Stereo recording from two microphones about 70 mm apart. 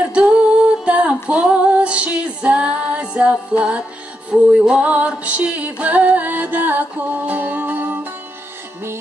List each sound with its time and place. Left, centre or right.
0.1 s music: centre
0.8 s female singing: centre
4.3 s music: centre